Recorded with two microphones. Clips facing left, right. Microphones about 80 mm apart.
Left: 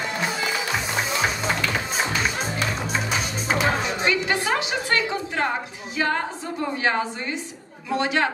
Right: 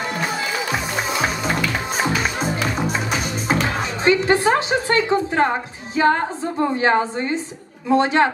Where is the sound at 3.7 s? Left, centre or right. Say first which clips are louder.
Right 5 dB; right.